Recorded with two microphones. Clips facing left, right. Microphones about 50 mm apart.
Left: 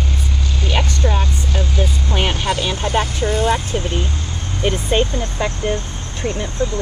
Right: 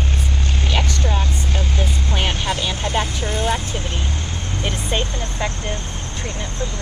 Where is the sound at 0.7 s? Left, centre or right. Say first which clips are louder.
Left 3 dB; left.